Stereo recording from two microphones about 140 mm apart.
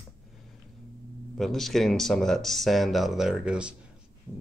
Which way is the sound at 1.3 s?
Centre (ahead or behind).